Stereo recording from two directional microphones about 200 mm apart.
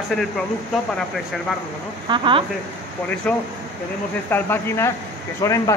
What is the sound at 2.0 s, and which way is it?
Speech, 25° right (ahead or behind).